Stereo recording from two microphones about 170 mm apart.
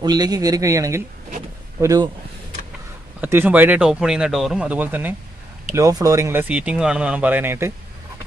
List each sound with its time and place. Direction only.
0.0 s speech: 25° right (ahead or behind)
3.2 s speech: 10° right (ahead or behind)